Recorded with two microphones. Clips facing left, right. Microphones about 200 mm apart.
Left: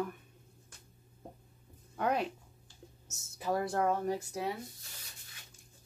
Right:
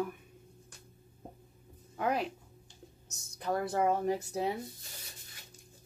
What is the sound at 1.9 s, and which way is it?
Speech, centre (ahead or behind).